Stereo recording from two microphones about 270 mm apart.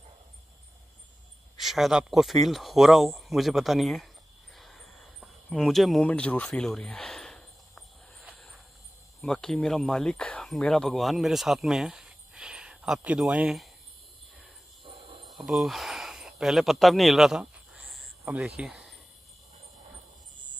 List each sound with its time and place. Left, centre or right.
1.6 s speech: centre
4.6 s a sound: centre
9.2 s speech: centre
14.9 s cricket: centre
15.3 s a sound: centre
18.6 s speech: centre